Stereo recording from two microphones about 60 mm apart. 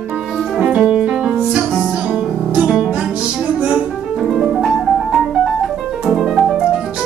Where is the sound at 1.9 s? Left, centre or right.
Centre.